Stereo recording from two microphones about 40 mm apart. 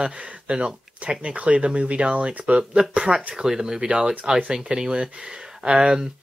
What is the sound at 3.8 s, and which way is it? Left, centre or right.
Speech, right.